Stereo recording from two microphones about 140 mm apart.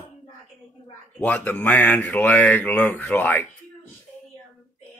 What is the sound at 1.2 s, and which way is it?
Speech, 10° left (ahead or behind).